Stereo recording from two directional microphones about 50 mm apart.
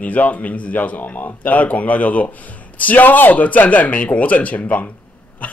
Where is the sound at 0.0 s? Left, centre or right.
Left.